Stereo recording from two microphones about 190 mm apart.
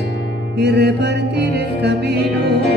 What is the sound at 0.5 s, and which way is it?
Music, 60° right (ahead or behind).